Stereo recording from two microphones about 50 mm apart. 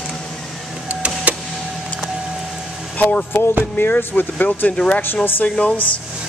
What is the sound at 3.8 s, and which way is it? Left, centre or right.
Speech, left.